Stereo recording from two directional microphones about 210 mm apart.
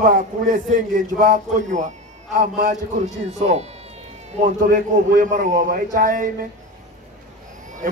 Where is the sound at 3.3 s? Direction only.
35° right (ahead or behind).